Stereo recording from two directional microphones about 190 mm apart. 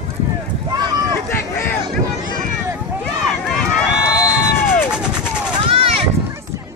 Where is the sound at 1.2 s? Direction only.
10° left (ahead or behind).